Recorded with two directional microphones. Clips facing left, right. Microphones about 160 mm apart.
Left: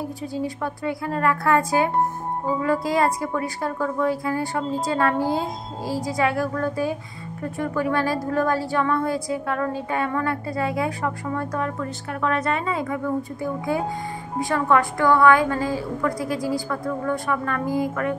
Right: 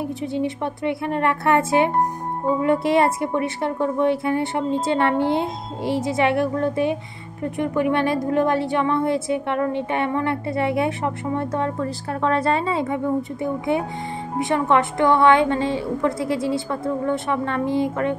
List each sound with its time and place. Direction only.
0.3 s a woman's voice: 25° right (ahead or behind)